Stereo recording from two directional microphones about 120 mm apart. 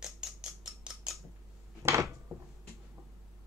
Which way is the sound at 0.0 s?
5° right (ahead or behind).